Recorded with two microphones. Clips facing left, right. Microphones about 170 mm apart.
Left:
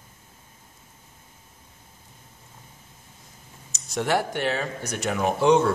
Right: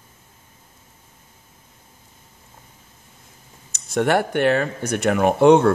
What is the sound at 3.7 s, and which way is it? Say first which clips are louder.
Speech: right 5 dB; 55° right (ahead or behind).